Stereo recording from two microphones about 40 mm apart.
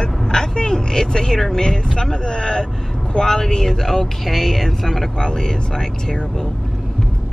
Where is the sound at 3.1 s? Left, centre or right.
Centre.